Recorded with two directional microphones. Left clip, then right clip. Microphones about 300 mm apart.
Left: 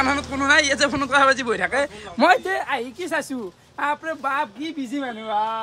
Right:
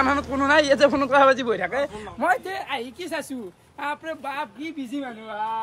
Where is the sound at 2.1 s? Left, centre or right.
Left.